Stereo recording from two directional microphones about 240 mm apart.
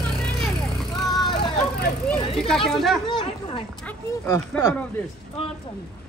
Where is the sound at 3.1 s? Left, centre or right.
Left.